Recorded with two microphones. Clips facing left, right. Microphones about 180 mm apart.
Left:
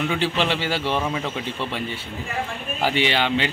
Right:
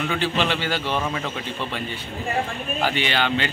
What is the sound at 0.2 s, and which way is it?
Speech, 30° left (ahead or behind).